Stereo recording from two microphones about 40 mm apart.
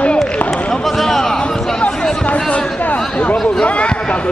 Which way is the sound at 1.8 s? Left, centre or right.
Left.